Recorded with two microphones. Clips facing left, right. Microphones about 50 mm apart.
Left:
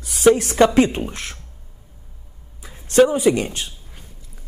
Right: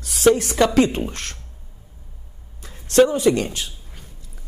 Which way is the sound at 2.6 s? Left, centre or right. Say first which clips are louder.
Left 1 dB; centre.